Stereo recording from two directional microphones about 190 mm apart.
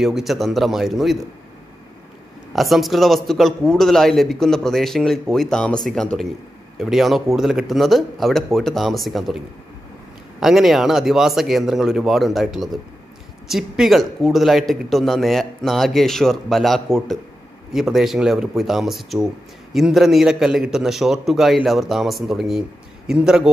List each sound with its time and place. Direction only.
0.0 s a man's voice: centre (ahead or behind)
2.5 s a man's voice: centre (ahead or behind)
10.4 s a man's voice: centre (ahead or behind)